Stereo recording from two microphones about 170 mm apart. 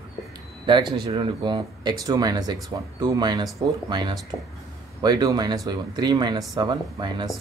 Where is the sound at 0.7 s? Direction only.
25° right (ahead or behind).